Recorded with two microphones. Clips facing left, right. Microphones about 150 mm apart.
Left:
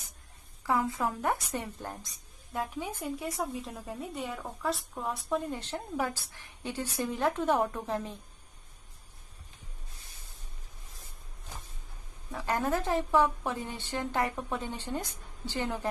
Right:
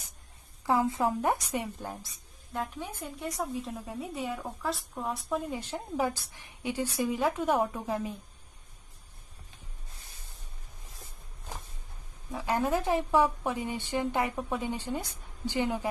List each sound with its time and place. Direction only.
0.7 s a woman's voice: 25° right (ahead or behind); by 2.0 s 5° right (ahead or behind)
2.5 s a woman's voice: 5° left (ahead or behind)
12.3 s a woman's voice: 15° right (ahead or behind)